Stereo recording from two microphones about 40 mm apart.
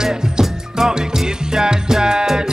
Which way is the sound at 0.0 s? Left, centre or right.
Centre.